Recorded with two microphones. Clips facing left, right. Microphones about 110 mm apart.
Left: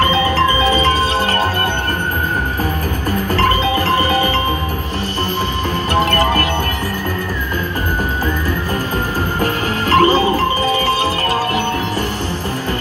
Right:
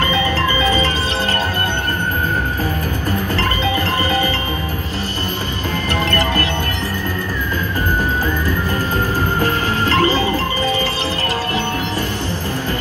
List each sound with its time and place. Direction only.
0.0 s music: 30° left (ahead or behind)
4.0 s music: 35° left (ahead or behind)
5.9 s music: 25° left (ahead or behind)
10.0 s music: 25° left (ahead or behind)